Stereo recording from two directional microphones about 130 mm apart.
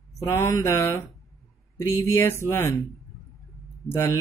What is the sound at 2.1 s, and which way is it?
Mantra, 20° left (ahead or behind).